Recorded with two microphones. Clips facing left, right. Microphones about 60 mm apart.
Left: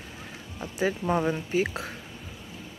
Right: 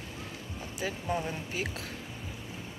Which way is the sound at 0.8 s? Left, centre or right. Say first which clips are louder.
Left 8 dB; left.